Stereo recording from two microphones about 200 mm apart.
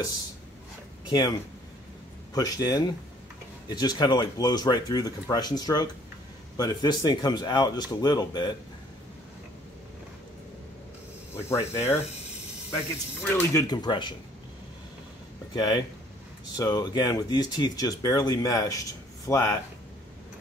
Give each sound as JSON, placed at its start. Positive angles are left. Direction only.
{"t": 1.0, "sound": "speech", "side_deg": 20}
{"t": 2.3, "sound": "speech", "side_deg": 20}
{"t": 11.4, "sound": "speech", "side_deg": 10}
{"t": 13.3, "sound": "speech", "side_deg": 15}
{"t": 15.5, "sound": "speech", "side_deg": 20}